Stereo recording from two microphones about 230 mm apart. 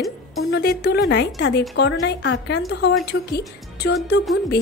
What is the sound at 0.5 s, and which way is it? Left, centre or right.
A woman's voice, left.